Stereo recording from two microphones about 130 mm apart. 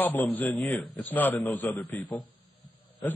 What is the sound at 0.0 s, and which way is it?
A man's voice, 15° left (ahead or behind).